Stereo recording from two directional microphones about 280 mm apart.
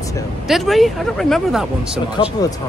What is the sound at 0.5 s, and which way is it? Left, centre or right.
Speech, centre.